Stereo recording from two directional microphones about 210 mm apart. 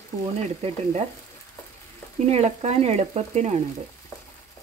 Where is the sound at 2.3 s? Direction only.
30° right (ahead or behind).